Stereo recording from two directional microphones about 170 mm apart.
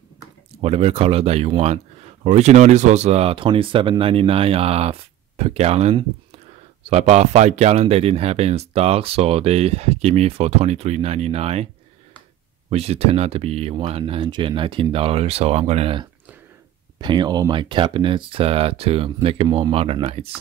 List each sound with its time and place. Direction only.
0.6 s speech: 35° right (ahead or behind)